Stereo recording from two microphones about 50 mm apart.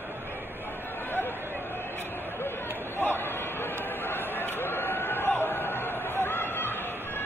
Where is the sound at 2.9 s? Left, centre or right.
Left.